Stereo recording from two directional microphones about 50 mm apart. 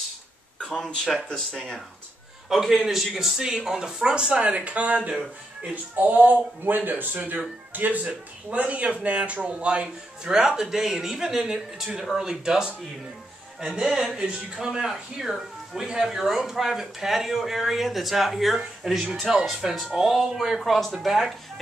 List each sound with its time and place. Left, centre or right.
0.6 s a sound: centre
1.0 s speech: centre
2.8 s speech: centre; by 5.8 s right
5.9 s speech: right; by 21.4 s centre